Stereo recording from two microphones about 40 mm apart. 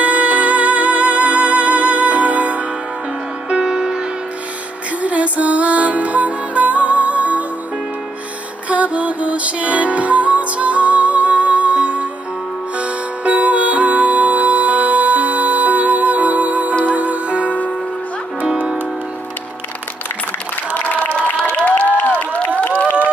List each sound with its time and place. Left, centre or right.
0.0 s music: right
3.4 s music: centre
5.0 s music: right
8.6 s music: right
21.6 s a sound: left